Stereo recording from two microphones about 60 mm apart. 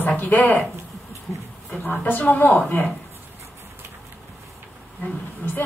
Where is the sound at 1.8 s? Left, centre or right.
Left.